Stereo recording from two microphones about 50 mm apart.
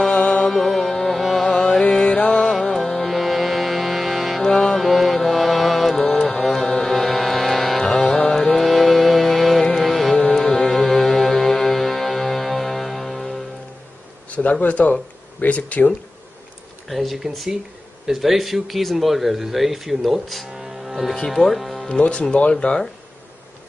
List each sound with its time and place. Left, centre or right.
0.1 s music: left
0.5 s music: centre
1.5 s music: centre
4.5 s music: centre
4.8 s music: centre
7.9 s music: centre
8.6 s music: centre
14.3 s speech: left
16.9 s speech: centre
21.8 s speech: centre